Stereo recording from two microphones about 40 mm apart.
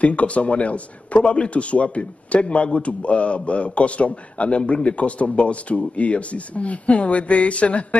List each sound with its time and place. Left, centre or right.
0.0 s a man's voice: left